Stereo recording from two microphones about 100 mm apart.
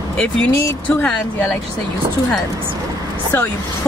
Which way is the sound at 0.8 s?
15° left (ahead or behind).